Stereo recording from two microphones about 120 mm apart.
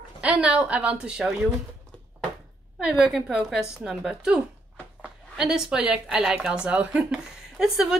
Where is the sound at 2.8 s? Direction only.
5° right (ahead or behind).